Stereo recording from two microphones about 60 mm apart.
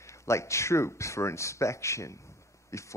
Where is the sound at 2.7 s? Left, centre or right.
Left.